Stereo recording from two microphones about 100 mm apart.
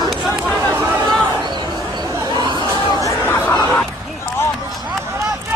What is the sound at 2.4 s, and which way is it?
Chatter, 50° right (ahead or behind).